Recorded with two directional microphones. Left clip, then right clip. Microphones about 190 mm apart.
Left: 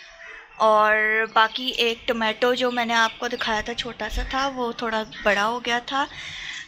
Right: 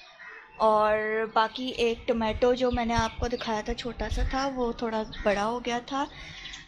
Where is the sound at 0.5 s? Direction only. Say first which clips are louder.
Left 5 dB; 5° left (ahead or behind).